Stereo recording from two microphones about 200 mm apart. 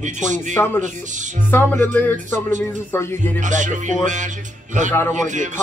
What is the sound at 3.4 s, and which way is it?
A man's voice, 40° right (ahead or behind).